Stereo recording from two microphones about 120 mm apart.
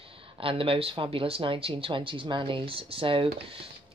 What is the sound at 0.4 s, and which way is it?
Speech, 50° right (ahead or behind).